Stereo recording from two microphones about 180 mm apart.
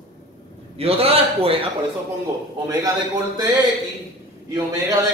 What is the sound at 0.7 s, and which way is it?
Speech, 35° right (ahead or behind).